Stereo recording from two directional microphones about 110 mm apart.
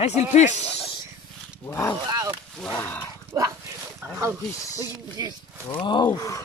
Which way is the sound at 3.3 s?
25° right (ahead or behind).